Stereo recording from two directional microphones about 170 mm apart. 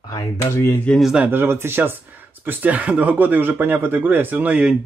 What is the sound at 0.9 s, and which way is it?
Speech, 5° right (ahead or behind).